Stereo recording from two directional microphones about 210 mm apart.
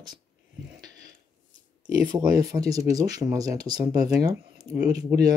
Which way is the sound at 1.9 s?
15° right (ahead or behind).